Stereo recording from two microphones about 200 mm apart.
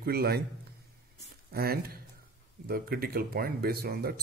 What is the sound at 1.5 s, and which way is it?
A man's voice, 50° right (ahead or behind).